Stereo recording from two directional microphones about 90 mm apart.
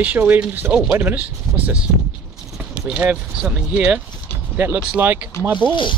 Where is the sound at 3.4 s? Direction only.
15° right (ahead or behind).